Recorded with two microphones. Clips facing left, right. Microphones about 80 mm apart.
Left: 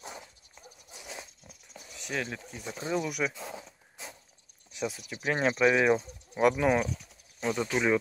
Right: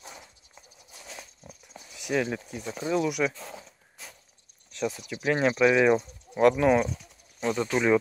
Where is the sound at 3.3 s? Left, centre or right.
Centre.